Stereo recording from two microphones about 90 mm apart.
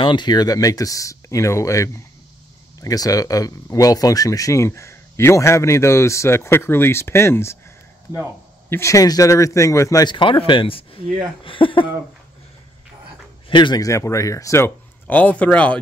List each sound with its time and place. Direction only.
0.0 s speech: 60° left (ahead or behind); by 7.5 s 30° left (ahead or behind)
8.6 s speech: 25° left (ahead or behind)
8.9 s speech: 40° left (ahead or behind)
10.0 s a man's voice: 65° left (ahead or behind); by 11.0 s 85° left
11.4 s a man's voice: 75° left (ahead or behind)
13.5 s speech: 60° left (ahead or behind)
13.7 s speech: 35° left (ahead or behind)
15.0 s a man's voice: 15° left (ahead or behind)